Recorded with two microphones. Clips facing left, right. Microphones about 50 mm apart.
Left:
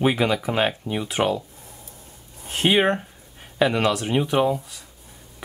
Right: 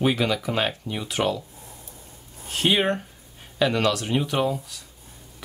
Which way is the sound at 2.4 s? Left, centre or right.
Left.